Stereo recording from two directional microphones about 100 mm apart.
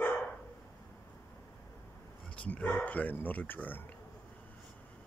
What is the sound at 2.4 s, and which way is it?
Speech, 15° left (ahead or behind).